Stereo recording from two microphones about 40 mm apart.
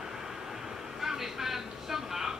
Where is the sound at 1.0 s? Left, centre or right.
Centre.